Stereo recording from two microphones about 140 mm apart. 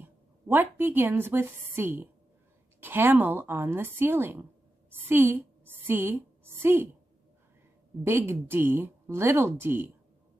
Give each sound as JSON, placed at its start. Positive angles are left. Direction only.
{"t": 0.0, "sound": "a woman's voice", "side_deg": -15}
{"t": 8.0, "sound": "speech", "side_deg": -15}